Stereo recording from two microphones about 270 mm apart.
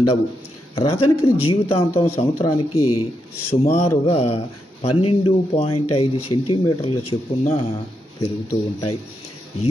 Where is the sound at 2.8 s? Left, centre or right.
Left.